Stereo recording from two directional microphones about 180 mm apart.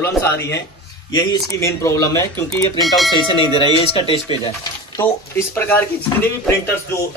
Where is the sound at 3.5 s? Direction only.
30° left (ahead or behind).